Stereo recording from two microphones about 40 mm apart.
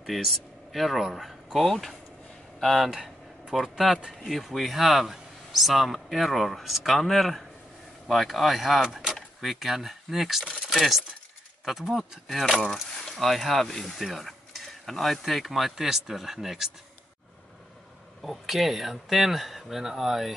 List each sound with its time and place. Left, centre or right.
0.0 s speech: centre
2.9 s a sound: centre
3.5 s speech: centre
10.7 s keys jangling: centre
11.6 s speech: centre
18.2 s speech: centre